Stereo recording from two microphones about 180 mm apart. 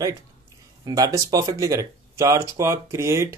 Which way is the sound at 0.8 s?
20° right (ahead or behind).